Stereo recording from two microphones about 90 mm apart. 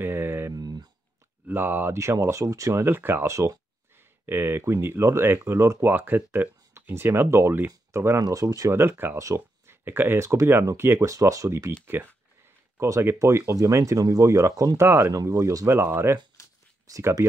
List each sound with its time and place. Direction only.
0.0 s speech: 25° right (ahead or behind)
0.5 s speech: 45° right (ahead or behind)
1.5 s speech: 20° right (ahead or behind)
2.0 s speech: 35° right (ahead or behind)
3.3 s speech: 35° right (ahead or behind)
4.3 s speech: 25° right (ahead or behind)
8.2 s speech: 40° right (ahead or behind)
8.7 s speech: 25° right (ahead or behind)
12.7 s speech: 35° right (ahead or behind)